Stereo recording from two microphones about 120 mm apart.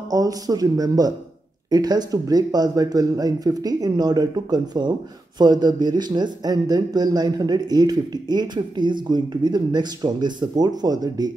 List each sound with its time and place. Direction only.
0.1 s speech: 30° right (ahead or behind)